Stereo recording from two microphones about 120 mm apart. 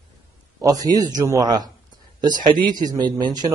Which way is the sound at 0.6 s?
30° right (ahead or behind).